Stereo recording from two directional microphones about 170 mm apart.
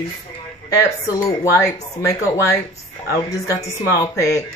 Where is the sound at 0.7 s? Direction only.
20° left (ahead or behind).